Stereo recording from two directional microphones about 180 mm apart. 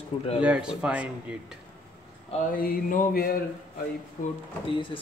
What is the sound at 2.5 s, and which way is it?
Mantra, 50° left (ahead or behind).